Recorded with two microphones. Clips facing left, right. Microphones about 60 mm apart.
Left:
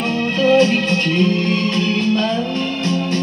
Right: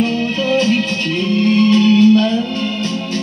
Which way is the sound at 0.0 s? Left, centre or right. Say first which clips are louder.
Even; left.